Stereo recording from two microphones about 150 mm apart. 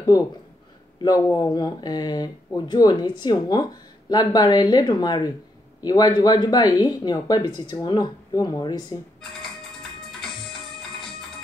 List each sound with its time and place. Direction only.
0.0 s speech: 25° left (ahead or behind)